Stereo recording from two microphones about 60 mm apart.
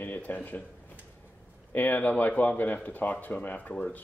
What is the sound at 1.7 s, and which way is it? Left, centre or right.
Speech, left.